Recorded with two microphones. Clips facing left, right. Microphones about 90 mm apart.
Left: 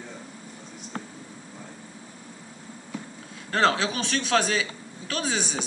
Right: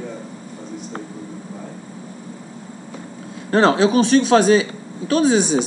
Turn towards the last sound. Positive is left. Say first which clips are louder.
# right 13 dB
turn(degrees=-15)  # may be behind; listen again after turning